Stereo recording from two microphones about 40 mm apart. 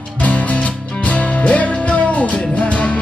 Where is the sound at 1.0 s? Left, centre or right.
Left.